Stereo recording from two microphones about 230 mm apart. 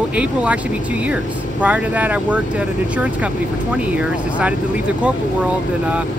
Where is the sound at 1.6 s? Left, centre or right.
Centre.